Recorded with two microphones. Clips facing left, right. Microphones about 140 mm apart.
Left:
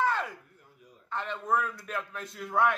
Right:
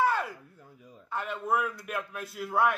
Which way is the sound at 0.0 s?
10° right (ahead or behind).